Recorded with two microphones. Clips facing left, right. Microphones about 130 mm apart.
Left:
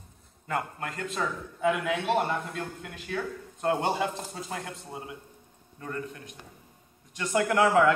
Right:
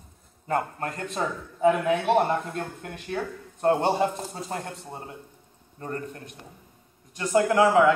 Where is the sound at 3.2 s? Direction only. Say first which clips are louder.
Right 3 dB; 30° right (ahead or behind).